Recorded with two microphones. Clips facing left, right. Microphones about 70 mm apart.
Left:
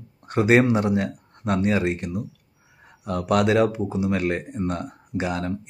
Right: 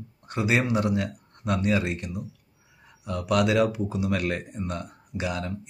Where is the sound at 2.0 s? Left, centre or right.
Left.